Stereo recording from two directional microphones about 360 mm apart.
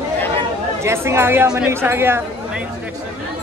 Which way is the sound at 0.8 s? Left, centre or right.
Centre.